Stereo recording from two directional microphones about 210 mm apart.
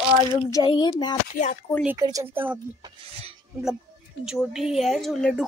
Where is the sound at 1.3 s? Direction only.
35° left (ahead or behind).